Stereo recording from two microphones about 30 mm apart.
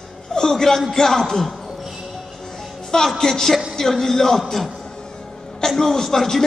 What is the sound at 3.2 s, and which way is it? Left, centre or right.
A man's voice, centre.